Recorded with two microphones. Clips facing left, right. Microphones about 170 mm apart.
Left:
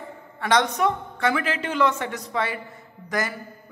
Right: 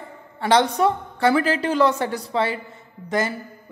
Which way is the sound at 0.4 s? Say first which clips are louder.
Right 3 dB; 30° right (ahead or behind).